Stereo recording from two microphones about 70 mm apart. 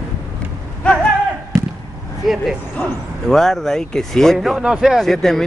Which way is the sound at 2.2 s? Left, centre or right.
Centre.